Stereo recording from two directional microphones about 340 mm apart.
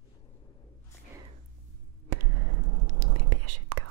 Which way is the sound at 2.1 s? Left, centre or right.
Right.